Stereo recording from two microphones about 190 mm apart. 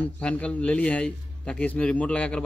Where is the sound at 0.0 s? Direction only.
5° left (ahead or behind).